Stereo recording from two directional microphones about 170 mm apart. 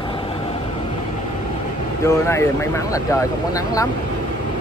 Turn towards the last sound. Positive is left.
turn(degrees=15)  # may be behind; listen again after turning